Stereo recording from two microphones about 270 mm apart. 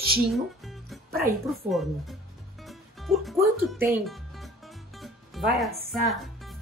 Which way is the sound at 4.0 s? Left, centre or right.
Centre.